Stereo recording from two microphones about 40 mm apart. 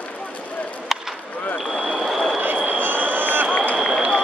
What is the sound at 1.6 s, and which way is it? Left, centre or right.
Vehicle, centre.